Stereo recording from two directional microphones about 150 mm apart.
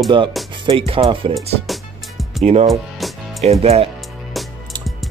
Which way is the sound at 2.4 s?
45° right (ahead or behind).